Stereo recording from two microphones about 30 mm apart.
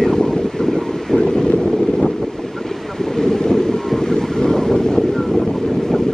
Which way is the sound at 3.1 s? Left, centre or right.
Centre.